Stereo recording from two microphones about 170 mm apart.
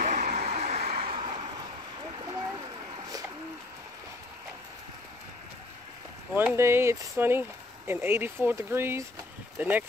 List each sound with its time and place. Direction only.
0.0 s a sound: 45° right (ahead or behind)
0.9 s vehicle: 30° right (ahead or behind)
6.3 s speech: 15° right (ahead or behind)